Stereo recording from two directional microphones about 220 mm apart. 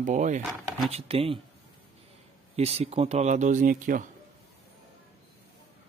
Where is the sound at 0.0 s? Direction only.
35° right (ahead or behind).